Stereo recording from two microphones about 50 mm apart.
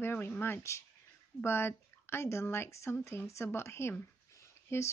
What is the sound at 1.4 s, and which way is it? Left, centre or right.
Speech, left.